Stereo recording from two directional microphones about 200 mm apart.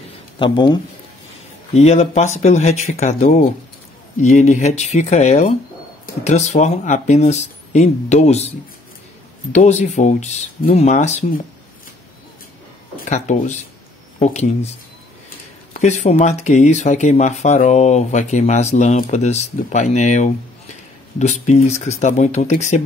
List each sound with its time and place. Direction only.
0.4 s speech: 20° left (ahead or behind)
1.7 s speech: 35° left (ahead or behind)
9.5 s speech: 35° left (ahead or behind)
12.9 s speech: 40° left (ahead or behind)
15.8 s speech: 35° left (ahead or behind)